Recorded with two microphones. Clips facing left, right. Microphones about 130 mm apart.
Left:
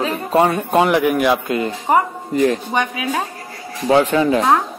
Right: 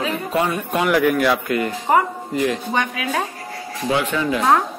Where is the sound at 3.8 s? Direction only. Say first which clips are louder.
Left 6 dB; 35° left (ahead or behind).